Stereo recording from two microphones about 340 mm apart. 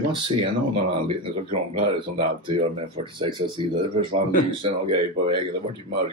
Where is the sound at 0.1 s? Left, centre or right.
Centre.